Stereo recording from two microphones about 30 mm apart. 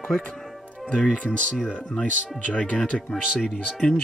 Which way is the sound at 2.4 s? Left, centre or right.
Left.